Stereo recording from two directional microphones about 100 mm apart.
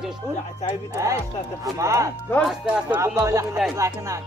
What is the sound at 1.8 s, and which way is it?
Music, 30° right (ahead or behind).